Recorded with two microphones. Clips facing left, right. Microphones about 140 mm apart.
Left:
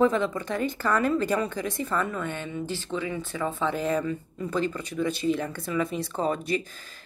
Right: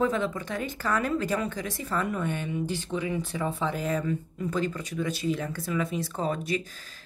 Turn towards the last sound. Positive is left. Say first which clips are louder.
# left 2 dB
turn(degrees=0)  # may be behind; listen again after turning